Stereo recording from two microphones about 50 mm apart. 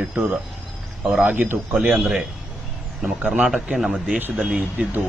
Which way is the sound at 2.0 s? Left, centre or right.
Centre.